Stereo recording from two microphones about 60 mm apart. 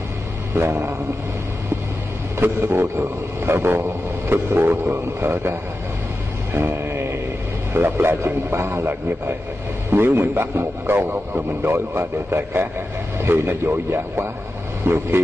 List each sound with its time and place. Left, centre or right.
0.6 s a man's voice: right
2.3 s a man's voice: right
6.5 s a sound: right
7.7 s a man's voice: right